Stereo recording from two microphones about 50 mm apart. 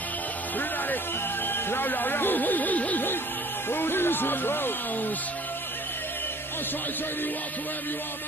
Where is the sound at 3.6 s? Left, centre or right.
Left.